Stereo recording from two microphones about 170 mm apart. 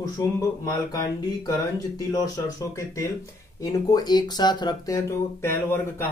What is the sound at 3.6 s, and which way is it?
Speech, 20° left (ahead or behind).